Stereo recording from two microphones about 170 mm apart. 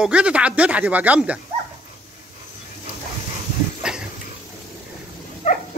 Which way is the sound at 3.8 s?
5° right (ahead or behind).